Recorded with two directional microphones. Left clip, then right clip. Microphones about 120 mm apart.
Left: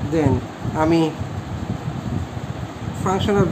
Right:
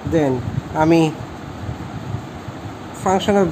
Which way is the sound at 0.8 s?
55° right (ahead or behind).